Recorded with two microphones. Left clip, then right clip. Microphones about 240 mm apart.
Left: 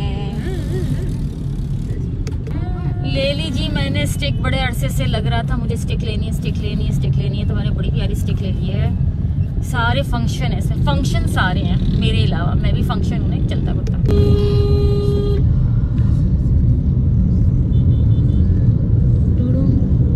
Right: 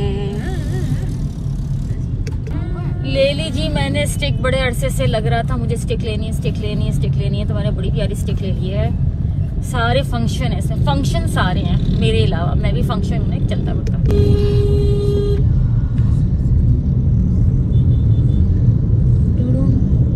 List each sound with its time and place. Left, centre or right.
3.2 s speech: centre
9.8 s speech: centre